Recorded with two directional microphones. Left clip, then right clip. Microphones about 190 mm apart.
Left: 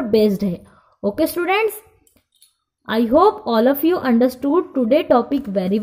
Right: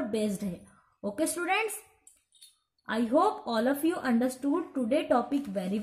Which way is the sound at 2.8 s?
40° left (ahead or behind).